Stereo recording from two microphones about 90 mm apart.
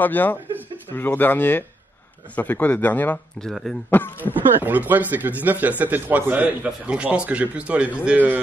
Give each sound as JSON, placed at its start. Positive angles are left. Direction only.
{"t": 0.0, "sound": "a man's voice", "side_deg": 20}
{"t": 3.3, "sound": "a man's voice", "side_deg": 5}
{"t": 4.2, "sound": "a man's voice", "side_deg": -20}